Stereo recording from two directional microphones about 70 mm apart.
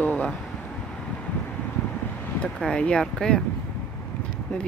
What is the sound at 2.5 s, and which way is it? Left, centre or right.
Speech, centre.